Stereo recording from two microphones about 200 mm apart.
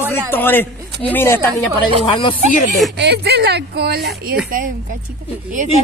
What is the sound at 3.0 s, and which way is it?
Speech, 55° right (ahead or behind).